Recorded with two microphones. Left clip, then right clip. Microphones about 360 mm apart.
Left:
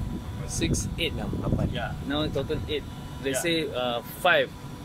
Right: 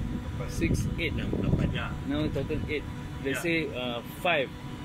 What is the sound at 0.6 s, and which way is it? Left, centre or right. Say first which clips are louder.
Speech: left 3 dB; left.